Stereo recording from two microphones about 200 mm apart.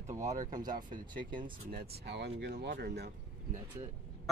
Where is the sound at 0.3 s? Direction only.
40° right (ahead or behind).